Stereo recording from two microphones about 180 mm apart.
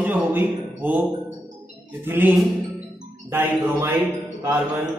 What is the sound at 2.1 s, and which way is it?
Speech, 10° right (ahead or behind).